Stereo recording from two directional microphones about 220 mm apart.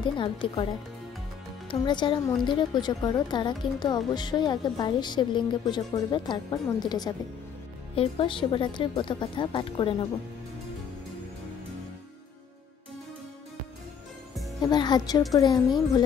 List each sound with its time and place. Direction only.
0.0 s a woman's voice: 25° left (ahead or behind)
1.7 s a woman's voice: 20° left (ahead or behind)
14.6 s a woman's voice: 20° left (ahead or behind)